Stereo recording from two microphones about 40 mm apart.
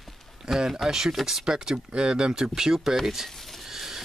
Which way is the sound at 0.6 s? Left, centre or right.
Centre.